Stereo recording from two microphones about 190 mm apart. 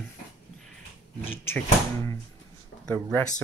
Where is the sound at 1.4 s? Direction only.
10° left (ahead or behind).